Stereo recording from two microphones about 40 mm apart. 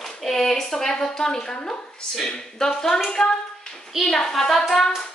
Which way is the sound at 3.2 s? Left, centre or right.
Centre.